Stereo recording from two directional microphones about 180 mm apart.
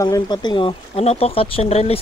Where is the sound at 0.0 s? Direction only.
20° left (ahead or behind).